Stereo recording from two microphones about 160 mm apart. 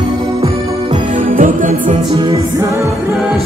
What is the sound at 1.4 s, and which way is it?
Music, 55° right (ahead or behind).